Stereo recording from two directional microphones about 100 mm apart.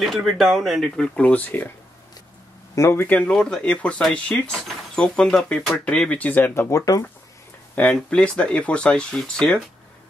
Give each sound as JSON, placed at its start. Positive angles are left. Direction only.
{"t": 0.0, "sound": "speech", "side_deg": 0}
{"t": 2.7, "sound": "speech", "side_deg": 30}
{"t": 7.7, "sound": "speech", "side_deg": 15}